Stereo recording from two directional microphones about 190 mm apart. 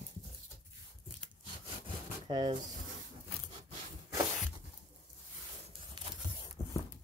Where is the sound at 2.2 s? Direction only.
25° right (ahead or behind).